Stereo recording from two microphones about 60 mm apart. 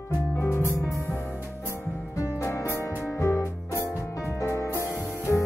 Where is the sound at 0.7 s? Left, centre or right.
Left.